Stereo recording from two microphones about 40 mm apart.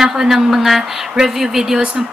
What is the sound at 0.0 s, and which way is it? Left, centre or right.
Speech, centre.